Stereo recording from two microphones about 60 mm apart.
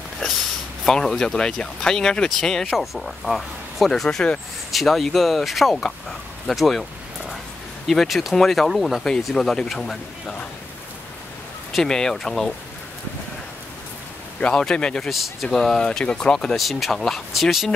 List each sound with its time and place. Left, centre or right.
0.8 s speech: centre
2.7 s speech: centre
6.4 s a sound: centre
7.8 s speech: centre
11.7 s speech: centre
14.4 s speech: centre
15.0 s speech: centre
16.5 s speech: centre